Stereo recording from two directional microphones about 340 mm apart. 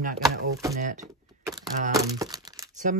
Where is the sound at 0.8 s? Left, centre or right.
Right.